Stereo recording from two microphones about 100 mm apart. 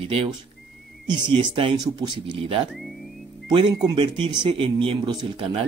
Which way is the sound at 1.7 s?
45° right (ahead or behind).